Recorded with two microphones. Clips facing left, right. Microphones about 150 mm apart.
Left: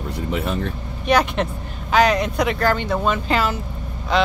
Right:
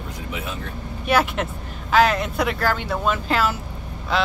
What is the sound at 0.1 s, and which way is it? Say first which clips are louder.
Vehicle: left 8 dB; 60° left (ahead or behind).